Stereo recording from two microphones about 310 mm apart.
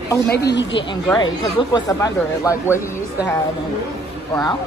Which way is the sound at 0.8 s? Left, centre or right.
Centre.